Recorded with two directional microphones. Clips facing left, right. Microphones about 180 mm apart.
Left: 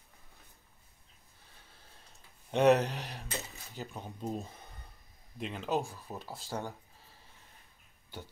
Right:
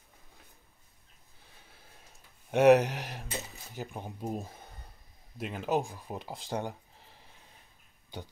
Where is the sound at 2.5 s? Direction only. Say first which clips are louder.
Right 4 dB; 10° right (ahead or behind).